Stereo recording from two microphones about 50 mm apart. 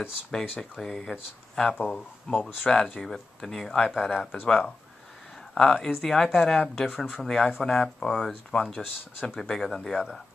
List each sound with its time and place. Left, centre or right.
0.3 s speech: centre
1.9 s speech: centre